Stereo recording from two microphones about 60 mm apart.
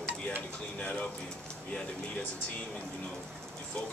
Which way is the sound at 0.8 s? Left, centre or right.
Centre.